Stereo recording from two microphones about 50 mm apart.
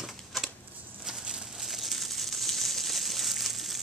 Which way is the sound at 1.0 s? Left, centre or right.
Centre.